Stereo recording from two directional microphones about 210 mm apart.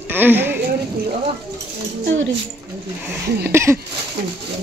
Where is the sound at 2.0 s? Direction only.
65° right (ahead or behind).